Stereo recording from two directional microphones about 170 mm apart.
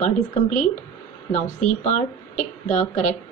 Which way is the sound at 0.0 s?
45° left (ahead or behind).